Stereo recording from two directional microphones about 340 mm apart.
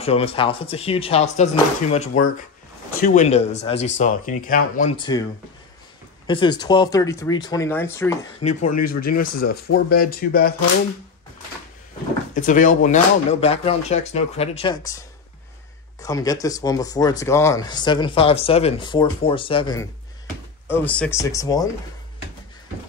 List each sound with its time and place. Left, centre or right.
0.0 s speech: centre
6.2 s speech: centre
8.4 s speech: left
9.1 s speech: left
12.4 s speech: left
16.0 s speech: centre